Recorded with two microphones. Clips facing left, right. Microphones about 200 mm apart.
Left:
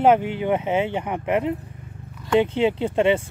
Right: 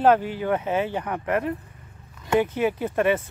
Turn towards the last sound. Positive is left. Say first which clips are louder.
# left 3 dB
turn(degrees=25)  # may be behind; listen again after turning